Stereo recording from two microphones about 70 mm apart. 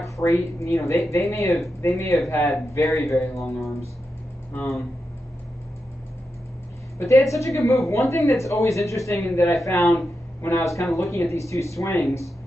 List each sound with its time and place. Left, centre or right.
0.0 s speech: left
2.2 s speech: left
7.0 s speech: left
9.3 s speech: left
10.6 s speech: left